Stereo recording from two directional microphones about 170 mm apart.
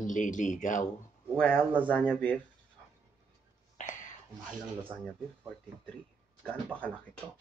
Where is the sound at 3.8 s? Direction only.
45° left (ahead or behind).